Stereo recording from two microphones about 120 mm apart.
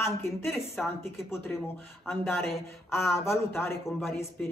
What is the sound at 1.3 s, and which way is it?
Speech, 20° left (ahead or behind).